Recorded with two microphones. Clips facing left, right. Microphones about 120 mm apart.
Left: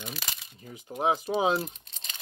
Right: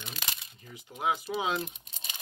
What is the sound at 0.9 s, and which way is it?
Speech, 35° left (ahead or behind).